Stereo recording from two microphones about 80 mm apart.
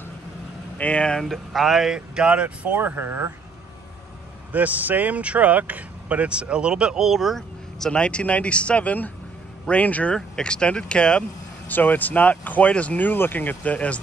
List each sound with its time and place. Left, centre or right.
0.7 s speech: centre; by 3.3 s right
4.5 s speech: centre